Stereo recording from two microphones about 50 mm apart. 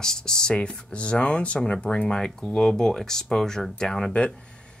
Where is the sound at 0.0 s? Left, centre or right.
Centre.